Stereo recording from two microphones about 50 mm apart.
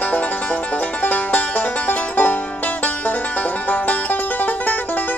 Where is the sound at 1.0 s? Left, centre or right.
Left.